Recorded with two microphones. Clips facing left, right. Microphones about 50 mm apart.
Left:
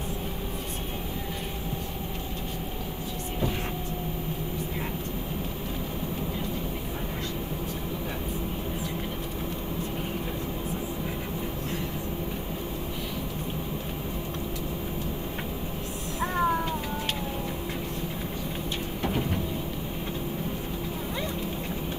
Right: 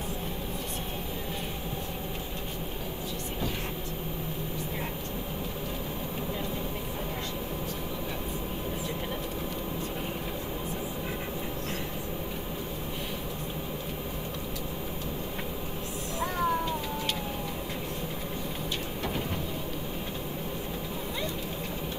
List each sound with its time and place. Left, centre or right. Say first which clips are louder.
16.2 s cat: left 3 dB; left